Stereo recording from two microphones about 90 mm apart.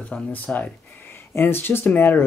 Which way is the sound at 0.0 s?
15° left (ahead or behind).